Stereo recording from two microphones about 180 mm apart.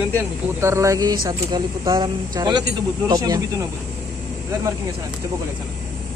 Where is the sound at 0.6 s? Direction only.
15° right (ahead or behind).